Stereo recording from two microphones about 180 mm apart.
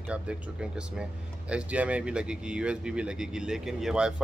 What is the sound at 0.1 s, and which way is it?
Speech, 5° right (ahead or behind).